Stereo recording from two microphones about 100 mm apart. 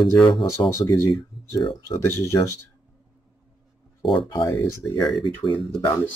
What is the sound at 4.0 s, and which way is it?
Speech, 55° left (ahead or behind).